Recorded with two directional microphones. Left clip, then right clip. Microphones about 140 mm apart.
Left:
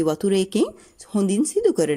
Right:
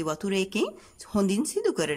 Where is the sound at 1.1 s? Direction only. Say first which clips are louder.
Left 5 dB; 20° left (ahead or behind).